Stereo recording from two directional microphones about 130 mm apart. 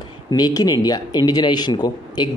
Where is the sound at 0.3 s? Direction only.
30° left (ahead or behind).